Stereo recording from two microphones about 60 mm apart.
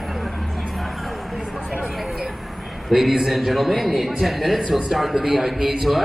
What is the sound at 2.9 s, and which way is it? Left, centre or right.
A man's voice, centre.